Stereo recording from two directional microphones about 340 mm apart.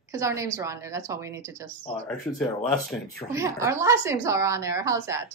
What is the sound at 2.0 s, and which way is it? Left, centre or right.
Speech, centre.